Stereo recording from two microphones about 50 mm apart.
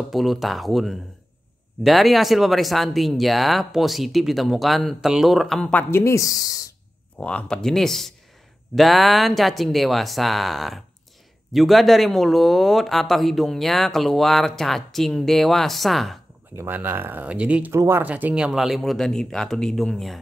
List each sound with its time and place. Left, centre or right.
0.1 s speech: centre
5.9 s speech: left
7.2 s speech: left; by 16.2 s centre
16.6 s speech: right
17.2 s speech: right
18.3 s speech: centre
18.8 s speech: centre